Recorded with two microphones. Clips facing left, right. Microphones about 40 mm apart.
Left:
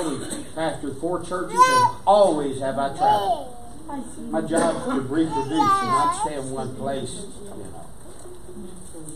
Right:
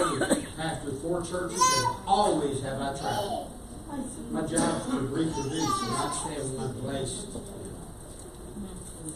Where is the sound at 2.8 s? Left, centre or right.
Left.